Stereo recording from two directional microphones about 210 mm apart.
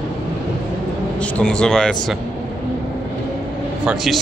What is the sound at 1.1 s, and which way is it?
Speech, 5° left (ahead or behind).